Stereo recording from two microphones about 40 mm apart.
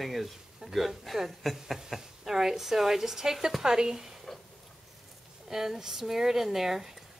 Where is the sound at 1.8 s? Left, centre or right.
Centre.